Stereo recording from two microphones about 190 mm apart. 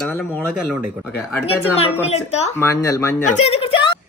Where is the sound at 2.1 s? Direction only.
35° left (ahead or behind).